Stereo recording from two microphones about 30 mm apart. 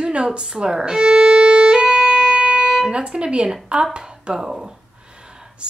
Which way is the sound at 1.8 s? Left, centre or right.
Right.